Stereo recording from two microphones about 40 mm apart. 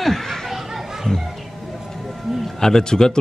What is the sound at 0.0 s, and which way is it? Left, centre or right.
Chatter, centre.